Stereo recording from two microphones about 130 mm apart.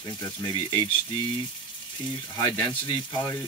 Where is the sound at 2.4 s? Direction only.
35° left (ahead or behind).